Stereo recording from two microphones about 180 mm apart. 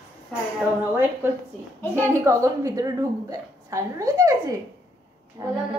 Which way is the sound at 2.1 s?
15° right (ahead or behind).